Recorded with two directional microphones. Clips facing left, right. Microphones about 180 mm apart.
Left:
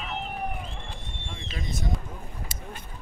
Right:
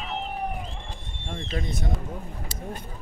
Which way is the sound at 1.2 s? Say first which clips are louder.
Right 6 dB; 55° right (ahead or behind).